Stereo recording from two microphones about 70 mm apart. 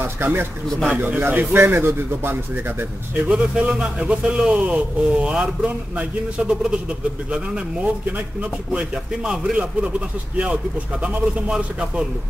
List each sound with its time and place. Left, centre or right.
0.0 s a man's voice: right
3.3 s a man's voice: centre